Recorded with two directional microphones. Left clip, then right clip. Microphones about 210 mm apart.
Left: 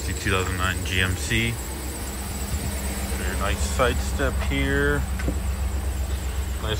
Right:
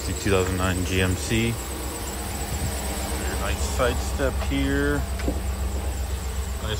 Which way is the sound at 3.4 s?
15° right (ahead or behind).